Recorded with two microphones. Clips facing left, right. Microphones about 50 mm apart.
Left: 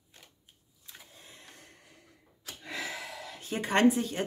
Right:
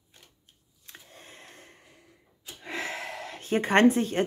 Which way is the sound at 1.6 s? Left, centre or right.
Right.